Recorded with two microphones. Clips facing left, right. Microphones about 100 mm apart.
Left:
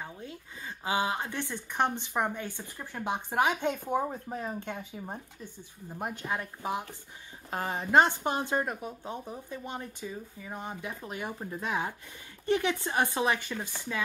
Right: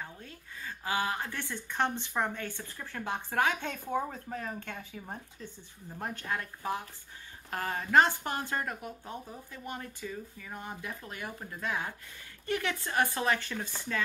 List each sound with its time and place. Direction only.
0.0 s speech: 15° left (ahead or behind)